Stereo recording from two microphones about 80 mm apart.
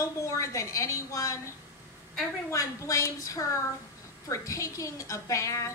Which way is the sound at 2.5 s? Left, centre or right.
Left.